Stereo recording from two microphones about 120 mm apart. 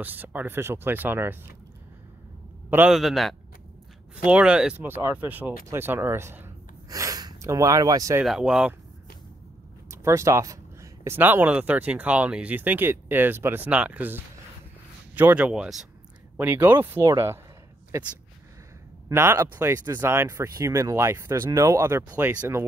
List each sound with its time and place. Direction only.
0.0 s speech: 15° right (ahead or behind)
2.9 s speech: 5° right (ahead or behind); by 8.2 s 30° right (ahead or behind)
8.2 s speech: 5° right (ahead or behind)
9.8 s speech: 25° right (ahead or behind); by 15.9 s 5° right (ahead or behind)
16.3 s speech: 15° right (ahead or behind)